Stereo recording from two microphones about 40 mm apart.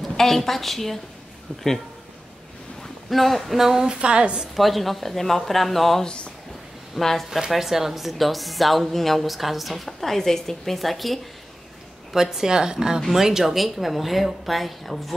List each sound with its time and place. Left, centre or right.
0.0 s a woman's voice: centre
1.5 s speech: left
3.1 s a woman's voice: centre
3.5 s a woman's voice: centre
4.0 s a woman's voice: right
4.6 s a woman's voice: centre
6.0 s speech: left
7.0 s a woman's voice: centre
7.2 s a woman's voice: centre
12.1 s a woman's voice: centre